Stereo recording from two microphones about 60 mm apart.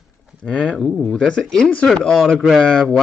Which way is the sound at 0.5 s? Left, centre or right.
Centre.